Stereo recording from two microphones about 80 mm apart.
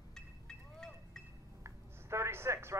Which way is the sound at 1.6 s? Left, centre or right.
Right.